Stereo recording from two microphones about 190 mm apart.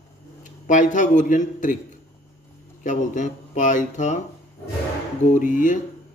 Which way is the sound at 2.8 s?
40° left (ahead or behind).